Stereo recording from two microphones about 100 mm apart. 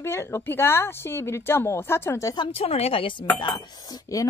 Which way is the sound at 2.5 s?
85° left.